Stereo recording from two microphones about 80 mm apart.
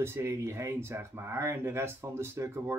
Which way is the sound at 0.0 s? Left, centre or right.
Right.